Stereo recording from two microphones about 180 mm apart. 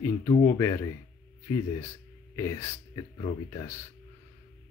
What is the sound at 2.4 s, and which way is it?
Speech, 15° left (ahead or behind).